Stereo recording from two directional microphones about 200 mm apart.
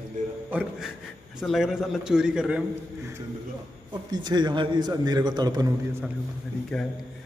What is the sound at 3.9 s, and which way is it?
A man's voice, 20° right (ahead or behind).